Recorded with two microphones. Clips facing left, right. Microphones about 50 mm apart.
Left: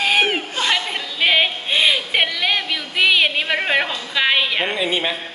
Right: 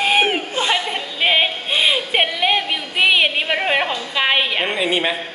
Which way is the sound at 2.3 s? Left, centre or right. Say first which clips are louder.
Right 2 dB; right.